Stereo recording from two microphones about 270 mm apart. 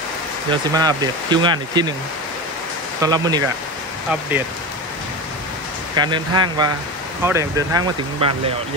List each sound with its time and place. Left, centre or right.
0.5 s speech: centre
3.0 s speech: centre
5.9 s speech: centre